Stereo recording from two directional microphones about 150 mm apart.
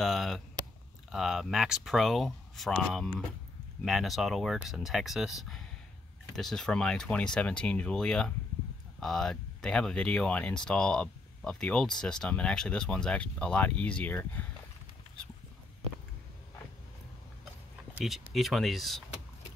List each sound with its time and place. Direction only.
0.0 s speech: centre (ahead or behind)
17.9 s speech: centre (ahead or behind)